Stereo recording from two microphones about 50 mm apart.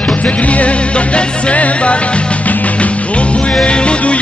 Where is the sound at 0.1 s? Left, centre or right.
Left.